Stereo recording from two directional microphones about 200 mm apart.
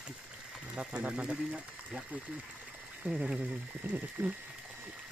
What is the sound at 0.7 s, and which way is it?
Speech, 5° right (ahead or behind).